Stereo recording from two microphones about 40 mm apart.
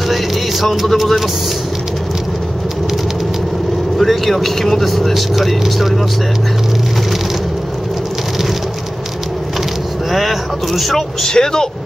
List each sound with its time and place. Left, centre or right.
0.1 s speech: centre
4.0 s speech: centre
10.1 s speech: centre
11.2 s speech: centre